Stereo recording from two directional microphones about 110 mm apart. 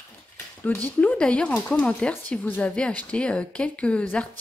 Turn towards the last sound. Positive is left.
turn(degrees=10)  # may be behind; listen again after turning